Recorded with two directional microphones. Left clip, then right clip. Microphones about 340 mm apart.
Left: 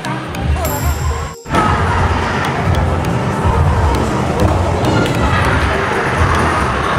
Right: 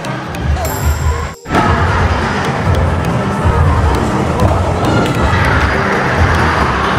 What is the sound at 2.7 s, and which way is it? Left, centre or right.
Music, centre.